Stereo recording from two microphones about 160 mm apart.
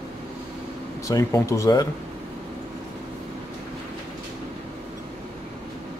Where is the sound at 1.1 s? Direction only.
20° left (ahead or behind).